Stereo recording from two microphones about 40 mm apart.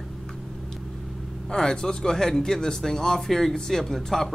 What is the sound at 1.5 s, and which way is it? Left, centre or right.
Speech, centre.